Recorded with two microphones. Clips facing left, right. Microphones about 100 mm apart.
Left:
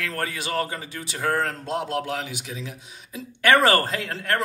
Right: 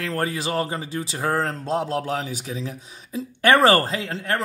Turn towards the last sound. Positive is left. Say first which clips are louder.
# even
turn(degrees=-25)  # may be behind; listen again after turning